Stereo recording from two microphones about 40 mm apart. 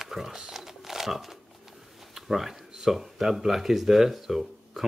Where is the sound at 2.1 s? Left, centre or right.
Centre.